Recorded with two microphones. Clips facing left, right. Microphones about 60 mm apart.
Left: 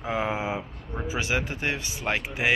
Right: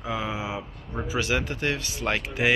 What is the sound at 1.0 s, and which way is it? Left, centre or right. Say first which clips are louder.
Speech: right 1 dB; left.